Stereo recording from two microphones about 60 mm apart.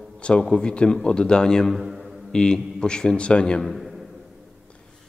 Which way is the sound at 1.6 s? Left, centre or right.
Centre.